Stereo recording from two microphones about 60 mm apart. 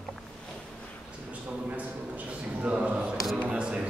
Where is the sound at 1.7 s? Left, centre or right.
Right.